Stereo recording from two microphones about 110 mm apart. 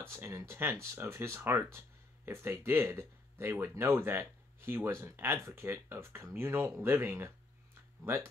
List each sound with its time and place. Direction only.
0.0 s speech: 25° right (ahead or behind)